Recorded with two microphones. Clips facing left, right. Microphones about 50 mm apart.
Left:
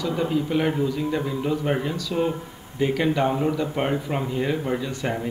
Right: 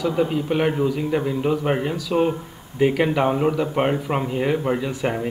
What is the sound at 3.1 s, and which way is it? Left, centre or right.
Speech, centre.